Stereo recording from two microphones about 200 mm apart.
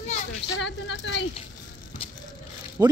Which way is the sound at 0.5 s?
65° left (ahead or behind).